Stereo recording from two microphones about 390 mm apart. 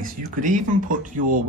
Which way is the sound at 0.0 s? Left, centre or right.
Centre.